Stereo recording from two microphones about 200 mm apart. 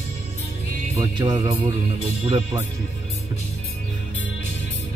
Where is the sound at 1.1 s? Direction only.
25° right (ahead or behind).